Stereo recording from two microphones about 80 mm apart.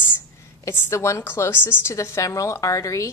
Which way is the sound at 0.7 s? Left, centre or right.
Left.